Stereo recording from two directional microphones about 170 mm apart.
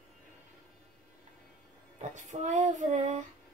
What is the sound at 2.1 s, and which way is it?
Child singing, 45° right (ahead or behind).